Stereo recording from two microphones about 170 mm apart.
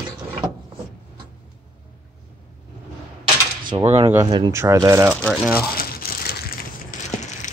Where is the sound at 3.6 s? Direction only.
25° right (ahead or behind).